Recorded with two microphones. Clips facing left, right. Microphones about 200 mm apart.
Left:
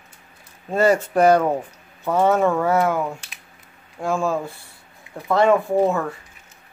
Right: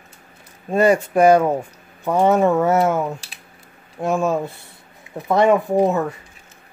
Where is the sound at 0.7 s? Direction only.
15° right (ahead or behind).